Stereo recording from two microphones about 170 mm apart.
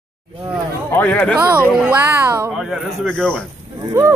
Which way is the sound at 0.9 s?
10° left (ahead or behind).